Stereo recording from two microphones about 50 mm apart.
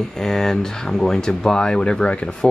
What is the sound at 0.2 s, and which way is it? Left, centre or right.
Speech, centre.